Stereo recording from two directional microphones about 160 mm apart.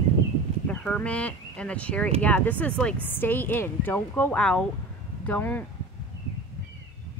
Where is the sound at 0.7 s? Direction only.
10° left (ahead or behind).